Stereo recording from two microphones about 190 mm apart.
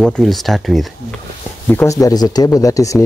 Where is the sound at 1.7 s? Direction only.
15° left (ahead or behind).